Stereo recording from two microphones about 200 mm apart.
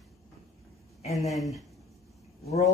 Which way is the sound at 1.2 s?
Centre (ahead or behind).